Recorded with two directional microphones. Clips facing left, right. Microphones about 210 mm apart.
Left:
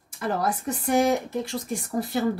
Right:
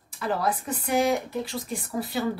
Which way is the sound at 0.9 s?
45° left (ahead or behind).